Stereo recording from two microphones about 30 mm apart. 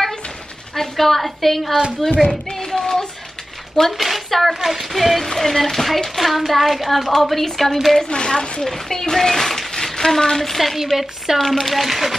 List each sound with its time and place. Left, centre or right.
0.7 s a woman's voice: centre
2.6 s a sound: centre
3.9 s a woman's voice: centre
4.6 s a woman's voice: centre
8.1 s a woman's voice: left
8.6 s speech: centre
9.7 s a sound: centre
10.6 s a woman's voice: centre
11.3 s a woman's voice: centre